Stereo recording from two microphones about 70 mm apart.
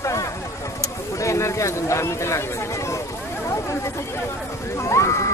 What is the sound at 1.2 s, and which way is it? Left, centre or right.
Speech, left.